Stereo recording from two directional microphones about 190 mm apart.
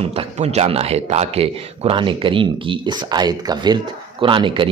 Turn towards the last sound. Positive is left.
turn(degrees=-25)  # may be behind; listen again after turning